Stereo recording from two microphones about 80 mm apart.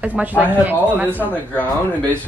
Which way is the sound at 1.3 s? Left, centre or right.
Left.